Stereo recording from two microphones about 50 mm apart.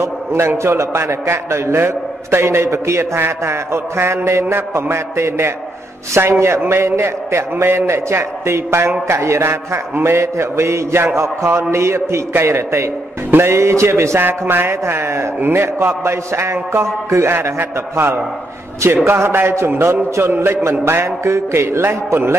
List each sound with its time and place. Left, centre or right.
0.0 s a sound: right
0.6 s a man's voice: right
3.2 s a man's voice: right
14.2 s a man's voice: right
15.6 s a man's voice: right
17.3 s a man's voice: right